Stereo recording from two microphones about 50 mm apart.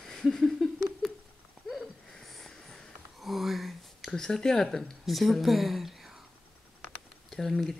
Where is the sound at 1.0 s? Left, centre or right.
Centre.